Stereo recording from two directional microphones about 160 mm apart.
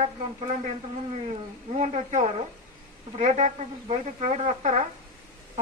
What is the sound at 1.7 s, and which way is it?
A woman's voice, 45° right (ahead or behind).